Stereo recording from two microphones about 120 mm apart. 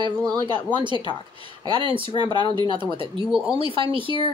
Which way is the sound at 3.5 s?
45° right (ahead or behind).